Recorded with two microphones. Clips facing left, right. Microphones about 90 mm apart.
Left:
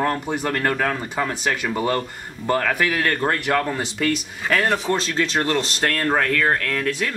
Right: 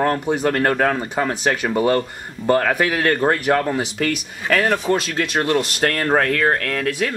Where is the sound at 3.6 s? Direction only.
15° right (ahead or behind).